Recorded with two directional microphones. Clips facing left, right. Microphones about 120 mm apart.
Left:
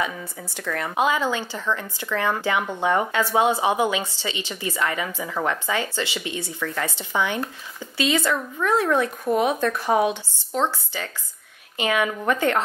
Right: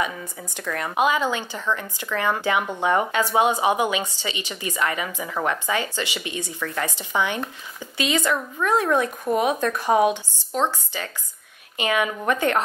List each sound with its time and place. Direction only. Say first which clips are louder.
0.0 s speech: even; 15° right (ahead or behind)